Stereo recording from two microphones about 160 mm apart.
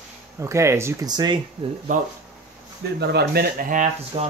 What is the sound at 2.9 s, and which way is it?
Speech, 90° right.